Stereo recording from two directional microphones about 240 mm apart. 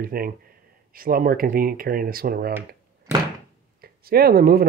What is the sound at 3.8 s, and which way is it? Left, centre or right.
Speech, right.